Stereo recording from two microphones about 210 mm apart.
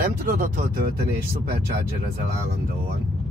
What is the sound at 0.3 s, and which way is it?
Speech, 45° right (ahead or behind).